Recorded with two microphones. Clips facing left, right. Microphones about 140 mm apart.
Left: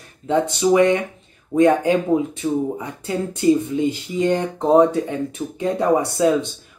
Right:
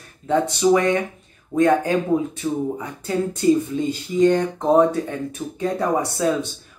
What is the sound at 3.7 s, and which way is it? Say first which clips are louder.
Speech: left 1 dB; 15° left (ahead or behind).